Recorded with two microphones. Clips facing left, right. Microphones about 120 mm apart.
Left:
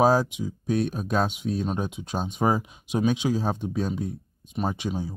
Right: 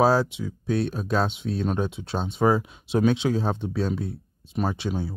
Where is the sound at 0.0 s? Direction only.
15° left (ahead or behind).